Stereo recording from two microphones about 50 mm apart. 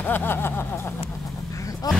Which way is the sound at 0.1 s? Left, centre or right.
Left.